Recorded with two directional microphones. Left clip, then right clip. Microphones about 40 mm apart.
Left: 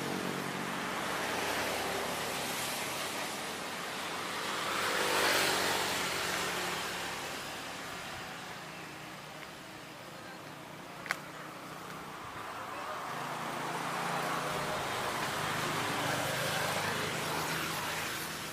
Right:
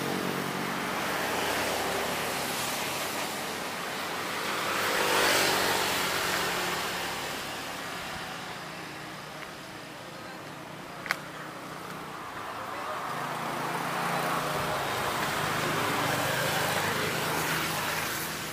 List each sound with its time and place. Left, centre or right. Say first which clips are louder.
0.0 s vehicle: right 5 dB; right
0.9 s waves: right 5 dB; left
1.8 s waves: right 5 dB; centre
2.8 s waves: right 5 dB; centre
11.1 s a sound: right 5 dB; centre
13.1 s vehicle: right 5 dB; left
15.0 s a sound: right 5 dB; centre
15.9 s vehicle: right 5 dB; centre
16.7 s vehicle: right 5 dB; centre
17.8 s vehicle: right 5 dB; right